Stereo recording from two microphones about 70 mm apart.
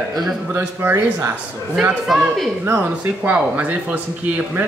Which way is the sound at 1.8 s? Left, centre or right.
Centre.